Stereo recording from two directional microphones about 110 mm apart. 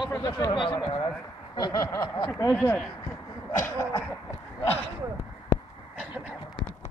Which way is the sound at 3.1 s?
25° left (ahead or behind).